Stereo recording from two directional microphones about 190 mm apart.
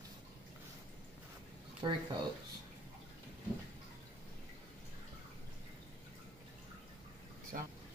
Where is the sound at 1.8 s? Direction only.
25° right (ahead or behind).